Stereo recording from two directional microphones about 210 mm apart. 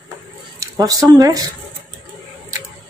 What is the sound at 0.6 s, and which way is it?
Speech, 15° right (ahead or behind).